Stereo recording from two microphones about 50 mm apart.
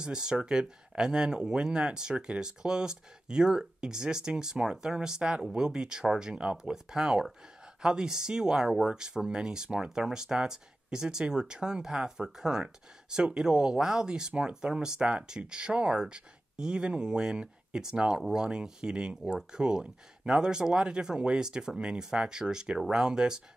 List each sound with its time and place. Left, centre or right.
0.0 s speech: centre